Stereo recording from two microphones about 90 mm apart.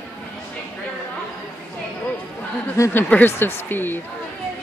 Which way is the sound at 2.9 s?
20° left (ahead or behind).